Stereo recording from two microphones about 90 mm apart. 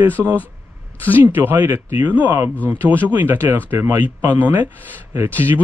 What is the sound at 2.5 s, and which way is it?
Speech, 15° left (ahead or behind).